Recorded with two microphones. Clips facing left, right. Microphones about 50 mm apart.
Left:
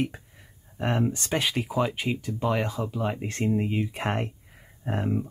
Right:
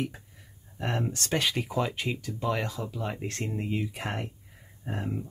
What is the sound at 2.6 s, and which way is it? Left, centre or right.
Speech, centre.